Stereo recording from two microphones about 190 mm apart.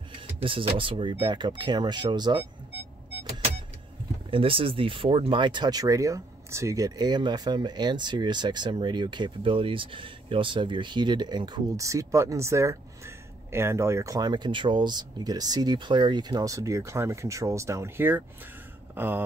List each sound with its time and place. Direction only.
0.4 s speech: 30° right (ahead or behind)
4.3 s speech: 30° right (ahead or behind); by 18.2 s 10° right (ahead or behind)
18.9 s a sound: 10° right (ahead or behind)